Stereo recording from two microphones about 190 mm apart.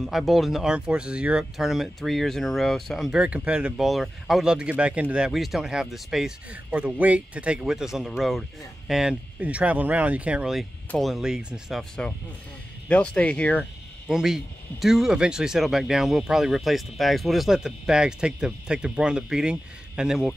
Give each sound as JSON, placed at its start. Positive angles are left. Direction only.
{"t": 0.0, "sound": "speech", "side_deg": 0}